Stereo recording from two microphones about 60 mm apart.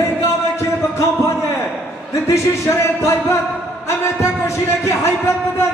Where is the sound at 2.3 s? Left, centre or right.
Left.